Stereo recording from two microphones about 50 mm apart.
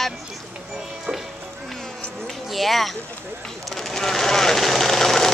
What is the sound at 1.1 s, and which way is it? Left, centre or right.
Music, right.